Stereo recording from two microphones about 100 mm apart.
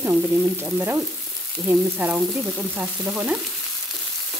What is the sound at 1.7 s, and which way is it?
Stir, 15° right (ahead or behind).